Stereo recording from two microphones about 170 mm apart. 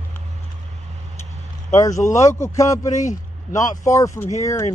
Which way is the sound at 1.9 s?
45° left (ahead or behind).